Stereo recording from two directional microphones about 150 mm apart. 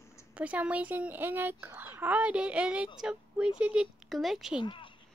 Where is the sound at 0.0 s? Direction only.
20° left (ahead or behind).